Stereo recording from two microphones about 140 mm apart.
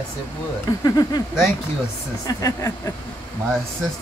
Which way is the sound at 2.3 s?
25° left (ahead or behind).